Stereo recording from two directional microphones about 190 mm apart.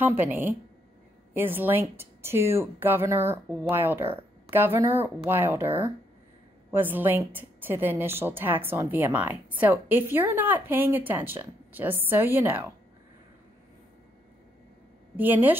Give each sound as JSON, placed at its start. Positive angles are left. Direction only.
{"t": 0.2, "sound": "a woman's voice", "side_deg": -10}
{"t": 15.1, "sound": "a woman's voice", "side_deg": -10}